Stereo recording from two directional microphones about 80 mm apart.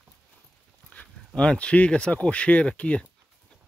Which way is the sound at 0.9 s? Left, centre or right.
Centre.